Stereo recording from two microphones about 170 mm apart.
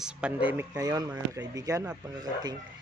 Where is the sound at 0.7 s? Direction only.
20° right (ahead or behind).